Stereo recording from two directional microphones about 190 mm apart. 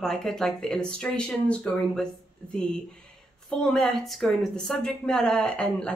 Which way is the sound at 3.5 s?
Centre (ahead or behind).